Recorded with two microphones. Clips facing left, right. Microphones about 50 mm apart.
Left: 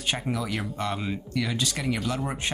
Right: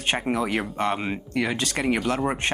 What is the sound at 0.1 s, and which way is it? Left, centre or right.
Speech, right.